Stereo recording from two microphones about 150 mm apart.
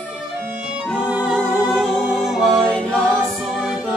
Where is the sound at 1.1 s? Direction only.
5° right (ahead or behind).